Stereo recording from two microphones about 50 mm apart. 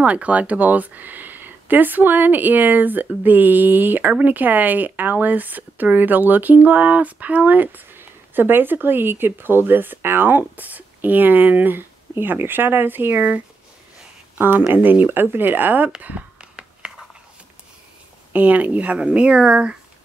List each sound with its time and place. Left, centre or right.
0.0 s speech: right
14.7 s speech: right
16.3 s whispering: centre
18.3 s speech: right